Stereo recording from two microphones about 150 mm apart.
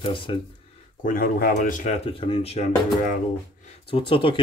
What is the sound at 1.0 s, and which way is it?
Speech, 75° left (ahead or behind).